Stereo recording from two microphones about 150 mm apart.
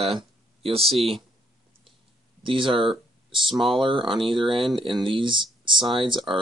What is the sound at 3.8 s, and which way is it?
Speech, 35° right (ahead or behind).